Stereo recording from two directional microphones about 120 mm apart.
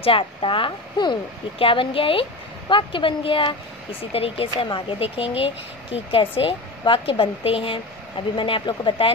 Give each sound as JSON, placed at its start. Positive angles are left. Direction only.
{"t": 0.0, "sound": "speech", "side_deg": 50}